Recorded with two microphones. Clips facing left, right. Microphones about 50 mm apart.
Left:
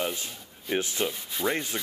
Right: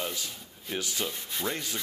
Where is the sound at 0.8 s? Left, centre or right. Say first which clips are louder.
Left 4 dB; left.